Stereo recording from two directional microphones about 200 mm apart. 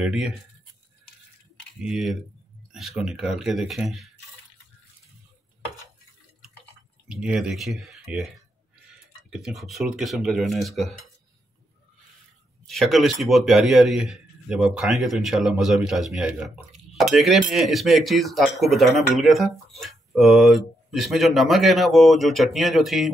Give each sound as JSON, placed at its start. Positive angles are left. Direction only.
{"t": 0.0, "sound": "speech", "side_deg": -5}
{"t": 1.8, "sound": "a man's voice", "side_deg": 0}
{"t": 7.1, "sound": "a man's voice", "side_deg": -5}
{"t": 9.3, "sound": "a man's voice", "side_deg": 0}
{"t": 12.6, "sound": "a man's voice", "side_deg": 0}